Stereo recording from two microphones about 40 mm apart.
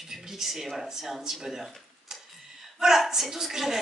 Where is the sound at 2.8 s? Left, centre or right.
Centre.